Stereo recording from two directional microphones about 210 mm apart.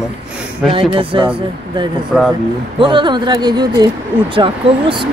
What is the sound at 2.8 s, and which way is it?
Speech, 25° right (ahead or behind).